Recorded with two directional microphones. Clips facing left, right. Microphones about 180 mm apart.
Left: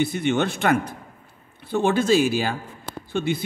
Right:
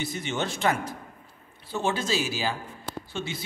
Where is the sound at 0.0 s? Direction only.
60° left (ahead or behind).